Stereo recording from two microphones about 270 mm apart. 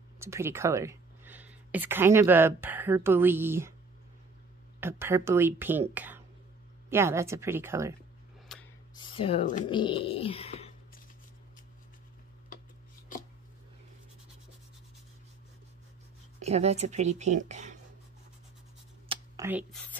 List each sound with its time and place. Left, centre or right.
0.2 s speech: centre
4.7 s speech: centre
8.5 s a sound: centre
8.9 s speech: centre
9.8 s a sound: centre
16.4 s speech: right
19.0 s computer keyboard: centre